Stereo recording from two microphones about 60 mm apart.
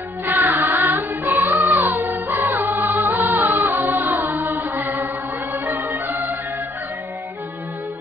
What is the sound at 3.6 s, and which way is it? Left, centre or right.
Music, right.